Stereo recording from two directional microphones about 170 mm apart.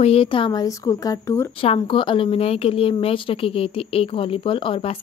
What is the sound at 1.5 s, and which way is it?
A woman's voice, 35° left (ahead or behind).